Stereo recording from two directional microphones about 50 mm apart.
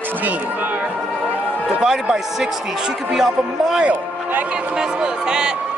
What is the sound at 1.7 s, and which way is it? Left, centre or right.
Speech, centre.